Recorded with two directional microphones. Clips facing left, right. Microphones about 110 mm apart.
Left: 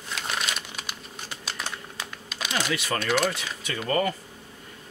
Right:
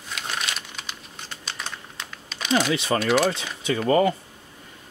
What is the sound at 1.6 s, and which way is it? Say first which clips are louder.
Typing: left 1 dB; 5° left (ahead or behind).